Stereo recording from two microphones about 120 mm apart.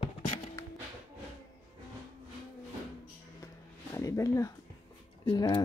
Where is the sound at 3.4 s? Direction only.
25° left (ahead or behind).